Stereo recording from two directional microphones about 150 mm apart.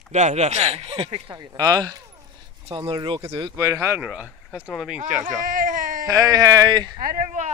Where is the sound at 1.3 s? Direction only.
25° right (ahead or behind).